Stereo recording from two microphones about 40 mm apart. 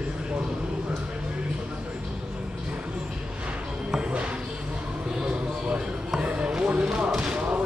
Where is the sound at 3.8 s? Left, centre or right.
Right.